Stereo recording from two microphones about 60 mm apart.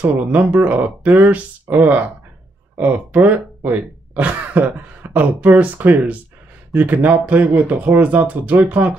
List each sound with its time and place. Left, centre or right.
0.0 s speech: right